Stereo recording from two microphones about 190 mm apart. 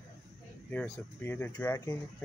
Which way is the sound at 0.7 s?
10° left (ahead or behind).